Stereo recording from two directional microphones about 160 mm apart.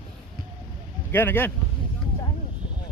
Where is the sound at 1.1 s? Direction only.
15° left (ahead or behind).